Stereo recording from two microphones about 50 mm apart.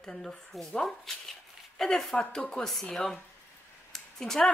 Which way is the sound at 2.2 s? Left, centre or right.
Centre.